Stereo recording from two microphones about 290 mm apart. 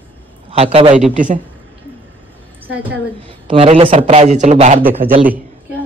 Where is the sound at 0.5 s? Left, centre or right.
Centre.